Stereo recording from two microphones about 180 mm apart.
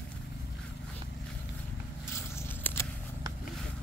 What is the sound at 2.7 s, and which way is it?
Biting, 10° left (ahead or behind).